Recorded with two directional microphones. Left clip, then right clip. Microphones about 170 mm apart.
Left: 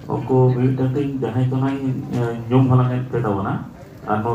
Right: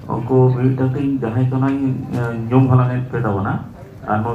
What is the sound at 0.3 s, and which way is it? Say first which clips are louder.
Speech: right 2 dB; 60° left (ahead or behind).